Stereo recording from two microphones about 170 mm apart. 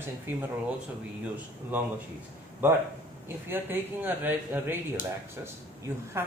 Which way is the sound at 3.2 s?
10° right (ahead or behind).